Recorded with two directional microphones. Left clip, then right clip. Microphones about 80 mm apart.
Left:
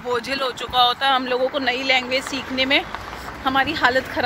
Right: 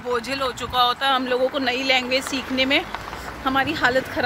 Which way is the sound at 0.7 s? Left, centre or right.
Right.